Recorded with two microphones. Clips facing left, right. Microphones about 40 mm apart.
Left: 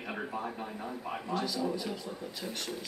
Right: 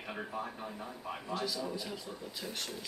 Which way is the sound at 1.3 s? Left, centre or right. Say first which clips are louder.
Left 3 dB; centre.